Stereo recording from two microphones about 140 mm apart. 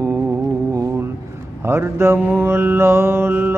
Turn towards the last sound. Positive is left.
turn(degrees=-15)  # may be behind; listen again after turning